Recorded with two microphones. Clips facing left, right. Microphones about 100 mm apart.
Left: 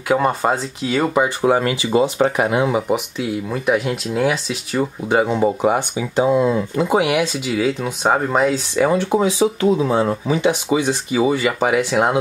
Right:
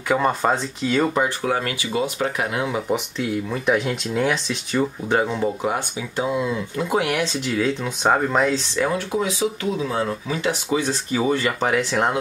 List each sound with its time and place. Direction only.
0.1 s speech: 5° left (ahead or behind)
1.4 s speech: 25° left (ahead or behind)
2.7 s speech: 5° left (ahead or behind)
5.3 s speech: 20° left (ahead or behind)
6.2 s speech: 40° left (ahead or behind)
6.8 s speech: 15° left (ahead or behind)
8.8 s speech: 30° left (ahead or behind); by 12.2 s 10° left (ahead or behind)